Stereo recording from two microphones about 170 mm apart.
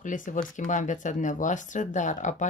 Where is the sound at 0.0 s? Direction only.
50° left (ahead or behind).